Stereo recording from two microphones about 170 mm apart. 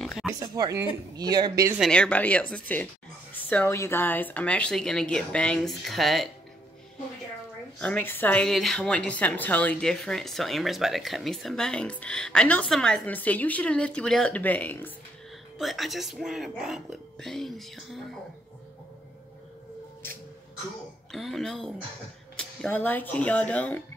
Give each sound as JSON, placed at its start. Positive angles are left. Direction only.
{"t": 0.2, "sound": "a woman's voice", "side_deg": 0}
{"t": 0.6, "sound": "speech", "side_deg": -20}
{"t": 1.8, "sound": "a woman's voice", "side_deg": 5}
{"t": 7.8, "sound": "a woman's voice", "side_deg": 10}
{"t": 15.5, "sound": "a woman's voice", "side_deg": 0}
{"t": 21.1, "sound": "a woman's voice", "side_deg": 0}